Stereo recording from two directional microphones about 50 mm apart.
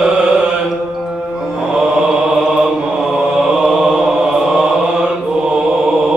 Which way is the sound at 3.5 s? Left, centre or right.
Centre.